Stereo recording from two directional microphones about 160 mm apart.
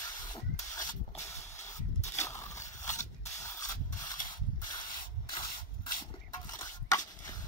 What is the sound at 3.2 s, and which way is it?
Spray, 15° left (ahead or behind).